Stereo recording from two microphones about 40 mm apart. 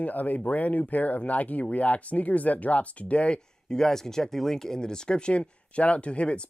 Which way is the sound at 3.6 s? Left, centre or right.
Centre.